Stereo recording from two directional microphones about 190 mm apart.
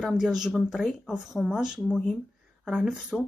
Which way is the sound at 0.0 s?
Centre (ahead or behind).